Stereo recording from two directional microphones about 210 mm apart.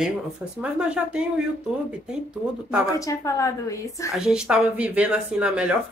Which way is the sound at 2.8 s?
15° left (ahead or behind).